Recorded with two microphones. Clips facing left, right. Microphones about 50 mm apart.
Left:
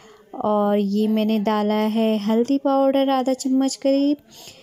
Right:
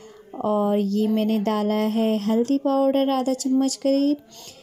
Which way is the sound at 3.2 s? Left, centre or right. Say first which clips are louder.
Left 2 dB; left.